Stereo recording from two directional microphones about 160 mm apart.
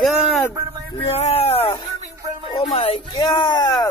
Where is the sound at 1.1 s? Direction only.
40° left (ahead or behind).